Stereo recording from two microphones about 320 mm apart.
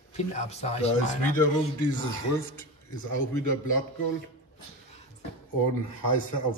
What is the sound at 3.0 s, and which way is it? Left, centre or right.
Speech, left.